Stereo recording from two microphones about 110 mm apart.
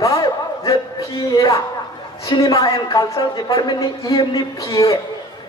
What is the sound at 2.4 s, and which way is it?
A man's voice, 30° left (ahead or behind).